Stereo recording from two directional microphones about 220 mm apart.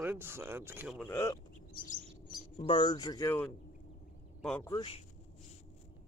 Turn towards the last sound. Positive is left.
turn(degrees=25)  # may be behind; listen again after turning